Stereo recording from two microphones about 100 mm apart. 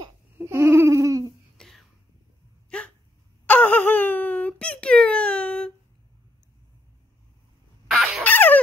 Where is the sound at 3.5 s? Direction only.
15° left (ahead or behind).